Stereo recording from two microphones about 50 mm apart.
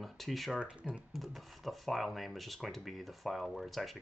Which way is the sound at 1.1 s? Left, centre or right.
Centre.